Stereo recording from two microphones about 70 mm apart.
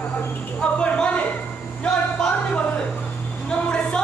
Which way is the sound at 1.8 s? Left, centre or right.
Centre.